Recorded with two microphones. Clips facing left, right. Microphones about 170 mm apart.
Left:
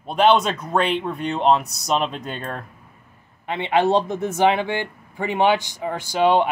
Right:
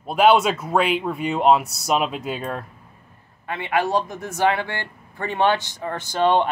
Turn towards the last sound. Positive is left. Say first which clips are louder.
# left 1 dB
turn(degrees=10)  # may be behind; listen again after turning